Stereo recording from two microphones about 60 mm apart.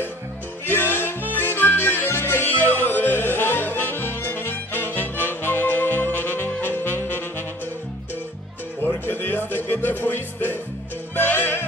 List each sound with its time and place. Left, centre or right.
0.7 s music: left
8.8 s music: left